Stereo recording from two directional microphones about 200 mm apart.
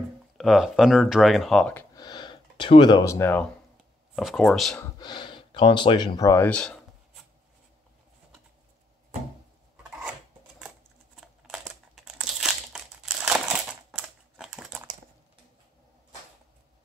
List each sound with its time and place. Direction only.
0.4 s speech: centre (ahead or behind)
2.0 s speech: 20° left (ahead or behind)
4.1 s speech: centre (ahead or behind)
4.9 s speech: 25° left (ahead or behind); by 7.2 s 5° left (ahead or behind)
11.1 s crumpling: centre (ahead or behind)